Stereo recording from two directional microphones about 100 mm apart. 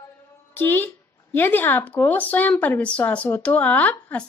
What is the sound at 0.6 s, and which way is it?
Speech, 20° left (ahead or behind).